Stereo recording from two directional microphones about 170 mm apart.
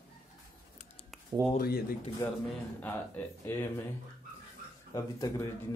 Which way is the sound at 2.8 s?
10° left (ahead or behind).